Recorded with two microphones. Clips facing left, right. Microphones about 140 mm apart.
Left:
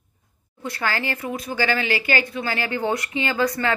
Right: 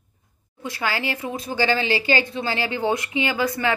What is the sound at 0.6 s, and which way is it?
Speech, 15° right (ahead or behind).